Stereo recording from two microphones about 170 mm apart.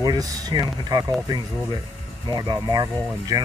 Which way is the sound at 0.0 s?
20° right (ahead or behind).